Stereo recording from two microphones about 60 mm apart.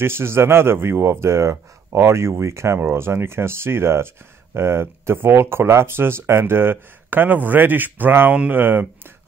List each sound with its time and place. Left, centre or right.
0.0 s speech: right